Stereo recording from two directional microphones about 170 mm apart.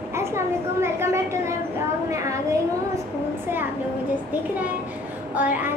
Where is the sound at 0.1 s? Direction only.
15° right (ahead or behind).